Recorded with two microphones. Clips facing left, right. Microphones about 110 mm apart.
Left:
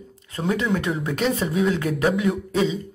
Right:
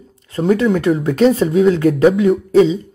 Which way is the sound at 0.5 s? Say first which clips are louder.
Right 9 dB; 40° right (ahead or behind).